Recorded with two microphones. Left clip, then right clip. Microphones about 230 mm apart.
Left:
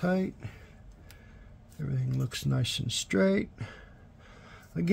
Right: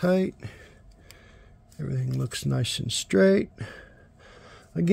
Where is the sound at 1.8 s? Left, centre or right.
Right.